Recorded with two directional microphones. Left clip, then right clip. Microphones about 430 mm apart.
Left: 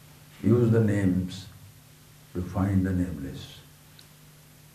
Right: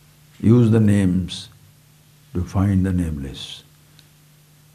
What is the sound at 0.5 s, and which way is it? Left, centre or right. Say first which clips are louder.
Speech: right 6 dB; right.